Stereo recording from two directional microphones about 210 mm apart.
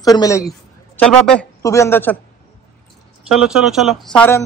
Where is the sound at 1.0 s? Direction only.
5° left (ahead or behind).